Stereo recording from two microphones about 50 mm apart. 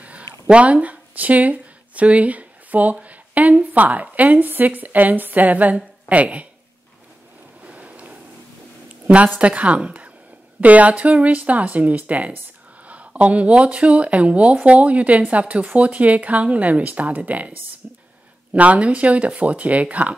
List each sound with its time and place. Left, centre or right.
0.5 s a sound: right
3.7 s a woman's voice: right
7.6 s waves: right
9.1 s speech: right